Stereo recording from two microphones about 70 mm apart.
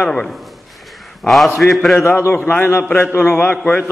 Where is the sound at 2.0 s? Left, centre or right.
Left.